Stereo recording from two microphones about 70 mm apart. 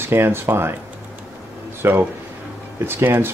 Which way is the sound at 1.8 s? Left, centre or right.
Right.